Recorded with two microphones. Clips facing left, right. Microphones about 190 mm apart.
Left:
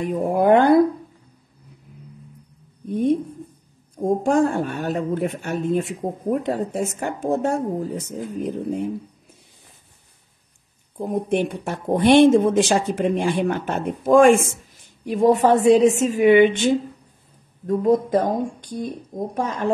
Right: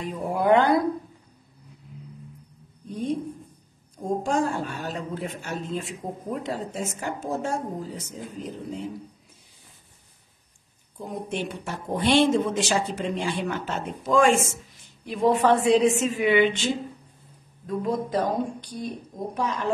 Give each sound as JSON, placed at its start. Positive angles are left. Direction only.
{"t": 0.0, "sound": "speech", "side_deg": 55}
{"t": 4.0, "sound": "speech", "side_deg": 55}
{"t": 11.0, "sound": "speech", "side_deg": 55}